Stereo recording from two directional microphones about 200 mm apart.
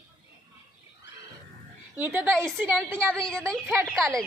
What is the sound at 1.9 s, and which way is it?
Speech, 10° right (ahead or behind).